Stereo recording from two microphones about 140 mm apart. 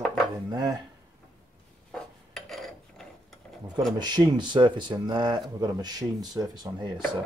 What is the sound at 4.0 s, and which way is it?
Speech, 30° right (ahead or behind).